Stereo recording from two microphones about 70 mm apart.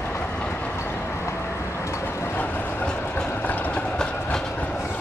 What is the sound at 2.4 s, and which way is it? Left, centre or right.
Vehicle, left.